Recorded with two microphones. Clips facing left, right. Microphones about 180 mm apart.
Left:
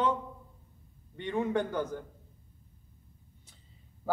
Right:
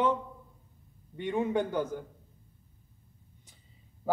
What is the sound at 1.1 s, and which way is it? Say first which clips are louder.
Speech: right 1 dB; 10° right (ahead or behind).